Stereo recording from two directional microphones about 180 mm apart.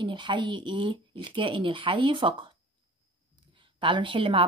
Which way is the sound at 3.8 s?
30° right (ahead or behind).